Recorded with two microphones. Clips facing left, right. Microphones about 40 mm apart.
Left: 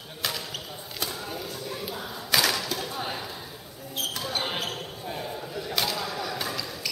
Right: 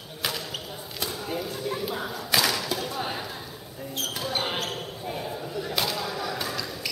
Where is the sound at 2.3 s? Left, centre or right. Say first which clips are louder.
Even; centre.